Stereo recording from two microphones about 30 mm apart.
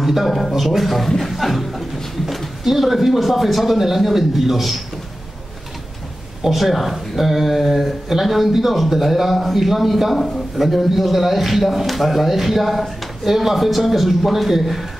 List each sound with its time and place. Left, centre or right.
0.0 s speech: centre
2.2 s a sound: centre
2.6 s speech: centre
6.5 s speech: centre